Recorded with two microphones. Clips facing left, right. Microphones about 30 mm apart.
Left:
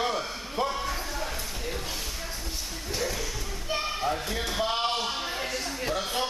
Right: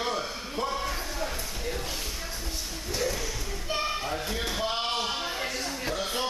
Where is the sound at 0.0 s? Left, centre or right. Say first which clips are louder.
Left 1 dB; centre.